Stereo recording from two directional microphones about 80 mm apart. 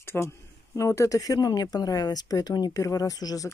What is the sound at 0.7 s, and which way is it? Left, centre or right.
Speech, left.